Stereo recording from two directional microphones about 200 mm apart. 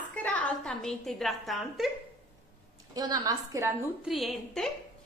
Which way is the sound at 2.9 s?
20° right (ahead or behind).